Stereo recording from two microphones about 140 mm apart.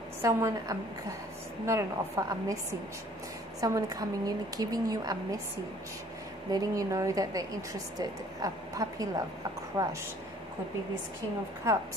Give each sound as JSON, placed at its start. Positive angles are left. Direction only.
{"t": 0.2, "sound": "a woman's voice", "side_deg": -20}
{"t": 3.6, "sound": "a woman's voice", "side_deg": -25}
{"t": 6.5, "sound": "a woman's voice", "side_deg": -25}